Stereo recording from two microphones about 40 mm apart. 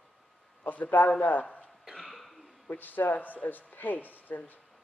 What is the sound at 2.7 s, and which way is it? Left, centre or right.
Speech, left.